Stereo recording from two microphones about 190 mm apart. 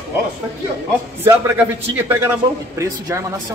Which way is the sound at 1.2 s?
10° right (ahead or behind).